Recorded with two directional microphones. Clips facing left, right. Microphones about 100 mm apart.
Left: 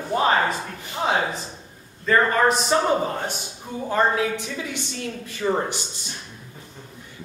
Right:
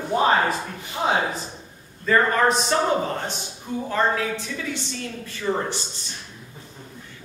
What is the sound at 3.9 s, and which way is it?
A woman's voice, 15° left (ahead or behind).